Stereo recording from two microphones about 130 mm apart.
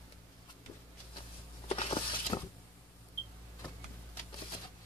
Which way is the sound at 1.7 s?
50° left (ahead or behind).